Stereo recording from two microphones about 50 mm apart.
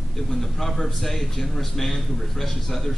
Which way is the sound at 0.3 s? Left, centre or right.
Centre.